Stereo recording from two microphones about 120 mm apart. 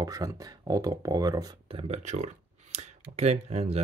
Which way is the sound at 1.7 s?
55° right (ahead or behind).